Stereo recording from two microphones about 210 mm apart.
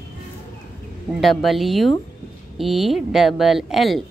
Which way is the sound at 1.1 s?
Centre (ahead or behind).